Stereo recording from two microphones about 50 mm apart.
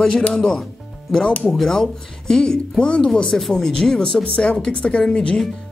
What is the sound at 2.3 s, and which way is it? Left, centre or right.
Speech, centre.